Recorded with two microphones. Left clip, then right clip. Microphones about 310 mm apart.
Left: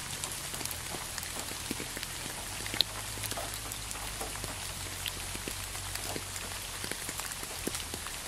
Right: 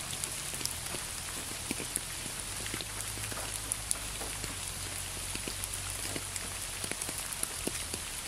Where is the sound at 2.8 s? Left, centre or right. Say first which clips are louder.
Left 11 dB; left.